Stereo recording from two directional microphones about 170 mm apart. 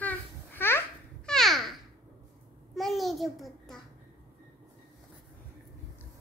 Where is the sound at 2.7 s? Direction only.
Centre (ahead or behind).